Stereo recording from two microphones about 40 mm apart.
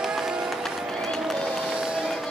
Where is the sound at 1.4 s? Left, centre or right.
Centre.